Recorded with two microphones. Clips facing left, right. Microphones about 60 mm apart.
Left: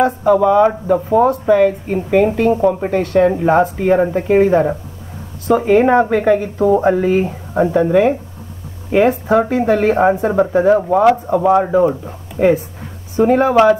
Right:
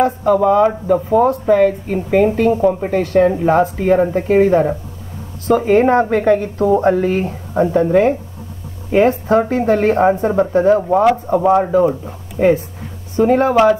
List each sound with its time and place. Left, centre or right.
0.0 s speech: centre